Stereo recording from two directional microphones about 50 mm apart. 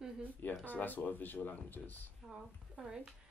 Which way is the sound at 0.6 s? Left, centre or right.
Left.